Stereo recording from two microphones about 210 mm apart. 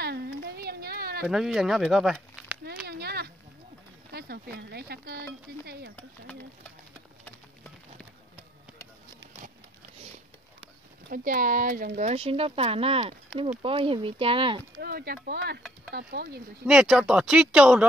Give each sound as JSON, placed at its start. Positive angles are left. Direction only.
{"t": 0.0, "sound": "a sound", "side_deg": -50}
{"t": 1.2, "sound": "speech", "side_deg": 0}
{"t": 2.6, "sound": "a sound", "side_deg": -50}
{"t": 4.1, "sound": "speech", "side_deg": -50}
{"t": 11.1, "sound": "speech", "side_deg": -40}
{"t": 14.8, "sound": "speech", "side_deg": -45}
{"t": 16.6, "sound": "speech", "side_deg": -5}